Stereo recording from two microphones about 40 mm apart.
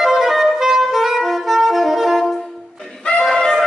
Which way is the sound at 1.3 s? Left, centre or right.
Centre.